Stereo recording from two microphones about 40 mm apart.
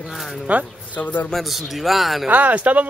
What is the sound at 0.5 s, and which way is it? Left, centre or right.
Speech, right.